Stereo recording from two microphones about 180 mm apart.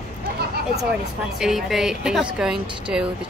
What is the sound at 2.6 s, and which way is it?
Speech, 25° right (ahead or behind).